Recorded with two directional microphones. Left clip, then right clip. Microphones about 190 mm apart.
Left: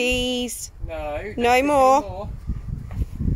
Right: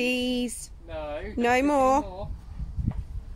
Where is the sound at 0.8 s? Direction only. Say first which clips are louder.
Left 5 dB; 50° left (ahead or behind).